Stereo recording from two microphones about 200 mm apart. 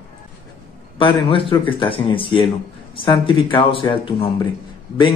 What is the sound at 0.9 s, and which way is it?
Speech, 25° left (ahead or behind).